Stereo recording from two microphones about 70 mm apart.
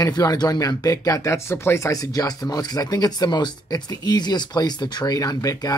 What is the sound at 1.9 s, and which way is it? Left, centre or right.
Speech, left.